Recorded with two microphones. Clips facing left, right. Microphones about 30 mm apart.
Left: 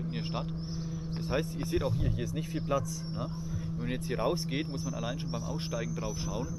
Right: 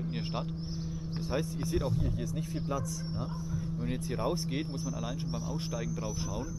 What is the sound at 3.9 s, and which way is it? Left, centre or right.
Speech, centre.